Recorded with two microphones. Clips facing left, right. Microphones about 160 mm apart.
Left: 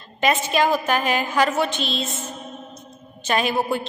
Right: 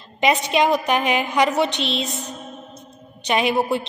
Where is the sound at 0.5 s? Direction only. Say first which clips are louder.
Right 2 dB; 20° right (ahead or behind).